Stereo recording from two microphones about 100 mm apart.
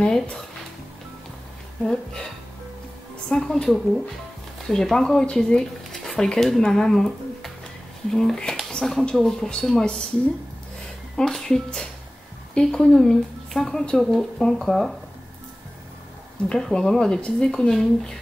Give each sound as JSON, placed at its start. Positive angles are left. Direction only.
{"t": 0.0, "sound": "speech", "side_deg": 10}
{"t": 3.3, "sound": "speech", "side_deg": 5}
{"t": 11.1, "sound": "speech", "side_deg": 5}
{"t": 16.4, "sound": "speech", "side_deg": 5}